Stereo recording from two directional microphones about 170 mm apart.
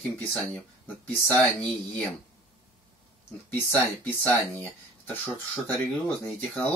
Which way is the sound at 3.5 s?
10° left (ahead or behind).